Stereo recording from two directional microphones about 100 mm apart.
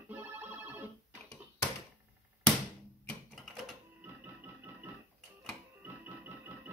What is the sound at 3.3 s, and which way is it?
Typewriter, centre (ahead or behind).